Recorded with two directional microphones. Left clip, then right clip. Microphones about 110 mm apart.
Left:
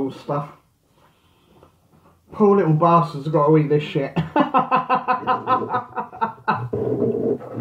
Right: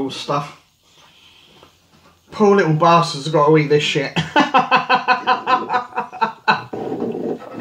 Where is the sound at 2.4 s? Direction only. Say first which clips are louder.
Right 3 dB; 15° right (ahead or behind).